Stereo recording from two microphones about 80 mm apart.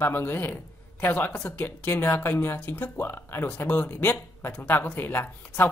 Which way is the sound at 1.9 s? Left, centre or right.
Left.